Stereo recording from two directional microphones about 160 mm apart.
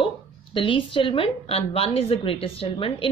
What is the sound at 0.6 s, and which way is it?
A woman's voice, 30° left (ahead or behind).